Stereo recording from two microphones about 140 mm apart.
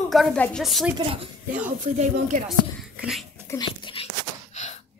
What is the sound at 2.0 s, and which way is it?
Speech, 65° right (ahead or behind).